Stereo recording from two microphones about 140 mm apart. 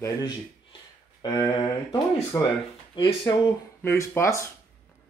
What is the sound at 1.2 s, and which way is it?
Speech, 30° left (ahead or behind).